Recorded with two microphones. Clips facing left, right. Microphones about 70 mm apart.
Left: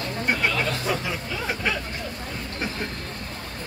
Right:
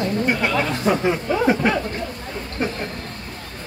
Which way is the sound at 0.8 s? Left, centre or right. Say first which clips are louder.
Right 8 dB; right.